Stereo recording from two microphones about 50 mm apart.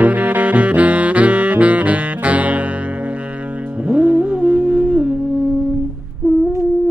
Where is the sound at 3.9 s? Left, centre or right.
Right.